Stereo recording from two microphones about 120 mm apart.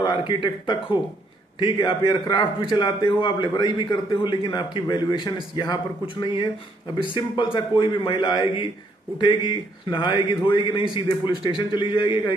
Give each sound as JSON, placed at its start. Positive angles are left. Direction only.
{"t": 0.0, "sound": "a man's voice", "side_deg": 40}